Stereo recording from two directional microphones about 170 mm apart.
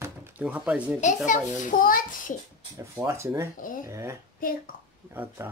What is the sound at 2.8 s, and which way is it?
Speech, 15° right (ahead or behind).